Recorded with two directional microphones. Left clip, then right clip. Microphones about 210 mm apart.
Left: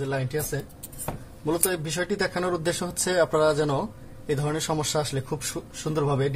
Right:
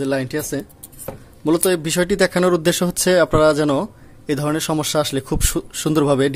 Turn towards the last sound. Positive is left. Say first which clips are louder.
# right 9 dB
turn(degrees=-55)  # may be behind; listen again after turning